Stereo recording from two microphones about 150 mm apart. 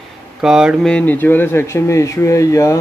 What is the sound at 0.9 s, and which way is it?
Speech, 10° left (ahead or behind).